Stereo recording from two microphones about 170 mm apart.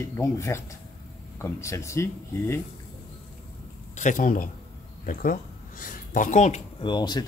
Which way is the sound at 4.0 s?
50° left (ahead or behind).